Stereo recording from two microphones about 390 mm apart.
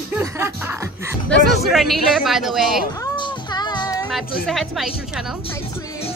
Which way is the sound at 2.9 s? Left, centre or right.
Centre.